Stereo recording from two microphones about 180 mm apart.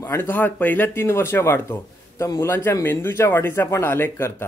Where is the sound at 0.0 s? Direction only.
15° left (ahead or behind).